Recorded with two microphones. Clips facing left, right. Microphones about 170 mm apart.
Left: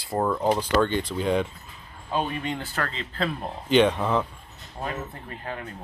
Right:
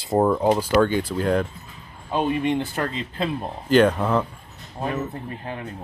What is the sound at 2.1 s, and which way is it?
Speech, 20° right (ahead or behind).